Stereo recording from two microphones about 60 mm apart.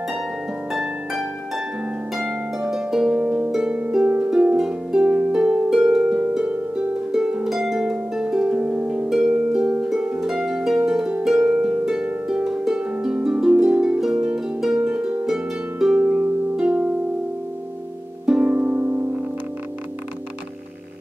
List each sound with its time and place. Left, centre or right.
0.7 s harp: centre
3.3 s harp: right
4.0 s harp: right
4.6 s harp: centre
7.1 s harp: centre
14.2 s harp: centre
18.2 s harp: centre
18.5 s harp: right